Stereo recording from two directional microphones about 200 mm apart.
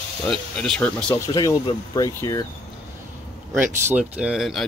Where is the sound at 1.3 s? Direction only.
20° left (ahead or behind).